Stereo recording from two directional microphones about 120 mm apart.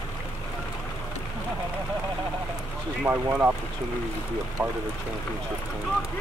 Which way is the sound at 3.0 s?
15° right (ahead or behind).